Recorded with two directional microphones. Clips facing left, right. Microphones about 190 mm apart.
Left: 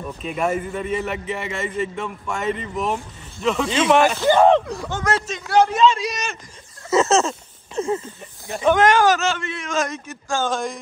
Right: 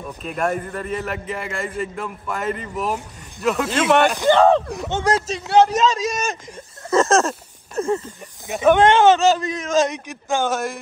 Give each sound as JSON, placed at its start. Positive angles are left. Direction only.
{"t": 0.0, "sound": "a man's voice", "side_deg": 0}
{"t": 4.6, "sound": "speech", "side_deg": -20}
{"t": 5.0, "sound": "a man's voice", "side_deg": -35}
{"t": 6.9, "sound": "a sound", "side_deg": 5}
{"t": 8.7, "sound": "a man's voice", "side_deg": -25}
{"t": 9.8, "sound": "a man's voice", "side_deg": -20}